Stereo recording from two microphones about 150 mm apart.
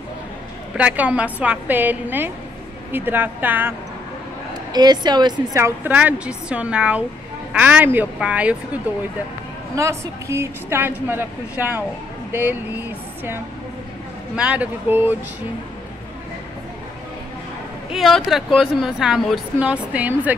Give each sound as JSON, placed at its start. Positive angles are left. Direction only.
{"t": 0.7, "sound": "a woman's voice", "side_deg": -10}
{"t": 4.7, "sound": "a woman's voice", "side_deg": -30}
{"t": 5.6, "sound": "a woman's voice", "side_deg": -10}
{"t": 9.8, "sound": "a woman's voice", "side_deg": -20}
{"t": 17.9, "sound": "speech", "side_deg": 0}